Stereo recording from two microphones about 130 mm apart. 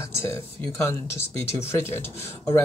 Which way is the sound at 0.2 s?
20° left (ahead or behind).